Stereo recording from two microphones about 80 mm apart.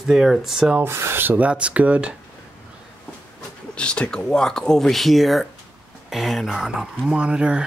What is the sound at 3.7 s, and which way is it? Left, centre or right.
Speech, centre.